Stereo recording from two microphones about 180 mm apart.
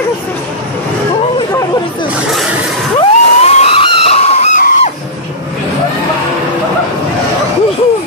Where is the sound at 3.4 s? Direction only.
35° left (ahead or behind).